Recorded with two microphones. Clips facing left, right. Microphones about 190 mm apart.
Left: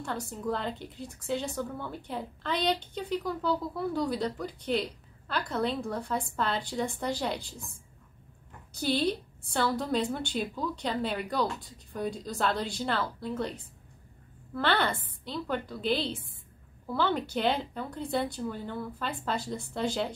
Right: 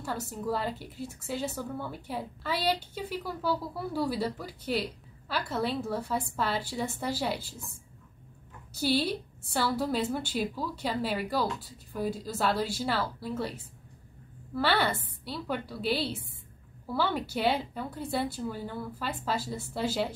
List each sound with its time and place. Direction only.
0.0 s a woman's voice: 5° right (ahead or behind)
8.7 s a woman's voice: 5° right (ahead or behind)